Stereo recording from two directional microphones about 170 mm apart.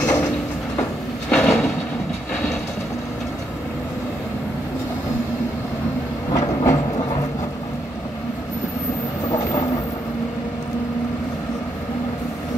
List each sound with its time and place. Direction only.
0.0 s train: 5° left (ahead or behind)
1.3 s a sound: 5° left (ahead or behind)
6.3 s train: 20° left (ahead or behind)